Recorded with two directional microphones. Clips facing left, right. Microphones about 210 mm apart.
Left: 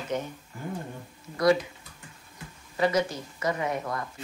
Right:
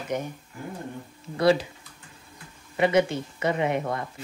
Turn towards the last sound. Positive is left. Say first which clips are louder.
# right 4 dB
turn(degrees=-25)  # may be behind; listen again after turning